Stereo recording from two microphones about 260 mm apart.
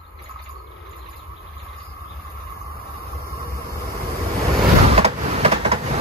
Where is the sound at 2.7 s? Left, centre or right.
Left.